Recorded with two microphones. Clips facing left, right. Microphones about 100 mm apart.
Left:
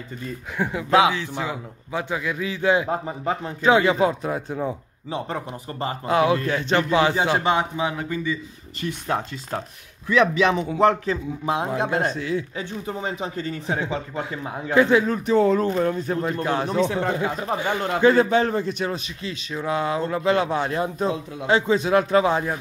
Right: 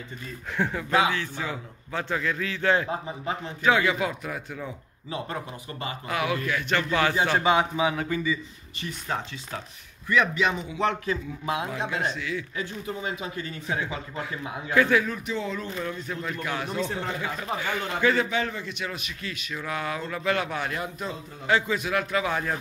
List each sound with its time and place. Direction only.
0.6 s a man's voice: 10° left (ahead or behind)
0.8 s a man's voice: 90° left
1.4 s a man's voice: 15° left (ahead or behind)
2.9 s speech: 50° left (ahead or behind)
3.6 s a man's voice: 25° left (ahead or behind)
7.4 s a man's voice: 10° right (ahead or behind)
8.8 s speech: 60° left (ahead or behind)
10.0 s a man's voice: 90° left
10.7 s speech: 40° left (ahead or behind); by 15.0 s 25° left (ahead or behind)
15.0 s speech: 40° left (ahead or behind)
16.8 s speech: 65° left (ahead or behind)
17.1 s a man's voice: 40° left (ahead or behind)